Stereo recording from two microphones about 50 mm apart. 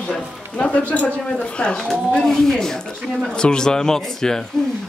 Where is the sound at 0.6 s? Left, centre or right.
Left.